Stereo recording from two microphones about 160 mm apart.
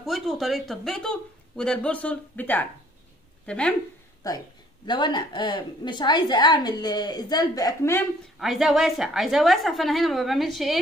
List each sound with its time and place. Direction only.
0.0 s a woman's voice: centre (ahead or behind)
4.2 s a woman's voice: 20° left (ahead or behind)
8.4 s a woman's voice: centre (ahead or behind)